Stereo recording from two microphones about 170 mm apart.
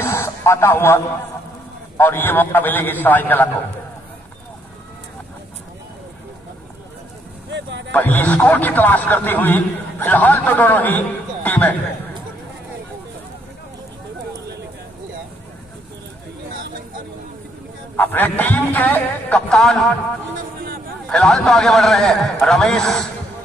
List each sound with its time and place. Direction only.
0.0 s music: 15° left (ahead or behind)
2.0 s a man's voice: 10° left (ahead or behind)
7.5 s a sound: 90° right
7.9 s a man's voice: 10° left (ahead or behind)
17.9 s a man's voice: 10° left (ahead or behind)
21.1 s a man's voice: 5° left (ahead or behind)